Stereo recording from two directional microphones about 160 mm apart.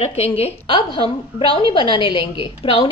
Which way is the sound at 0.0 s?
40° left (ahead or behind).